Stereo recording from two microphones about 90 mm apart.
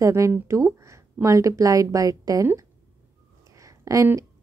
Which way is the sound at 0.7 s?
35° right (ahead or behind).